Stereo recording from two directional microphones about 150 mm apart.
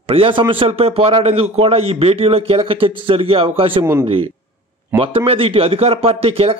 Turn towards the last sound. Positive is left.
turn(degrees=-40)  # may be behind; listen again after turning